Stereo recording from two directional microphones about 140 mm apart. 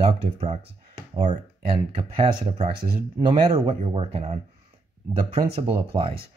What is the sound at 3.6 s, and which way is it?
Speech, 40° right (ahead or behind).